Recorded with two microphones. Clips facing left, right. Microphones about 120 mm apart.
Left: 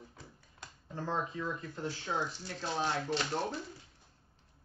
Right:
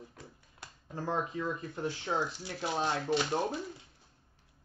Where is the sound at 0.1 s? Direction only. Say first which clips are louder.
Right 2 dB; centre (ahead or behind).